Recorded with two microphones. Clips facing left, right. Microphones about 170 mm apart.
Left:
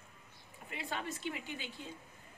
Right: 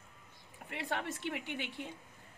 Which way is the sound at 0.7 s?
75° right (ahead or behind).